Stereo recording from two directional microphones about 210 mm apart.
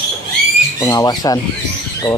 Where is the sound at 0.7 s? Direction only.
15° left (ahead or behind).